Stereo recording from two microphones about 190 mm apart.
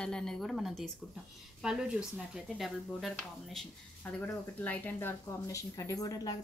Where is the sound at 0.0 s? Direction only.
5° left (ahead or behind).